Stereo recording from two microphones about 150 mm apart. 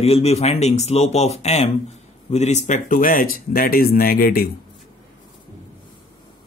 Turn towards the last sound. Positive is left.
turn(degrees=80)